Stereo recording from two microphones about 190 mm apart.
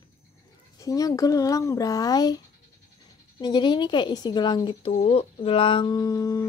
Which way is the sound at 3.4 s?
25° left (ahead or behind).